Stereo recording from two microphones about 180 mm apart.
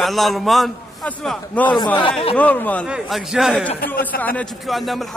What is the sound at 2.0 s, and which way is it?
Speech, 30° left (ahead or behind).